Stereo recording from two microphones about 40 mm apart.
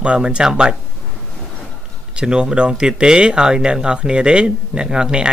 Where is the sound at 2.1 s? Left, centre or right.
Right.